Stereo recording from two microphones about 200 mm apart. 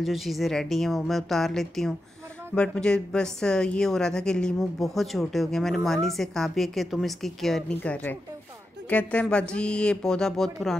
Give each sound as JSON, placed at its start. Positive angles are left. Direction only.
{"t": 0.0, "sound": "a woman's voice", "side_deg": 0}